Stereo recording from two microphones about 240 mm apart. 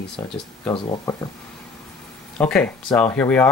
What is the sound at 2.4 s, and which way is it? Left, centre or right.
Speech, centre.